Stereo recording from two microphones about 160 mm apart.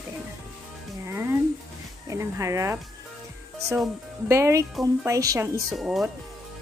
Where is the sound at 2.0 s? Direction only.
20° right (ahead or behind).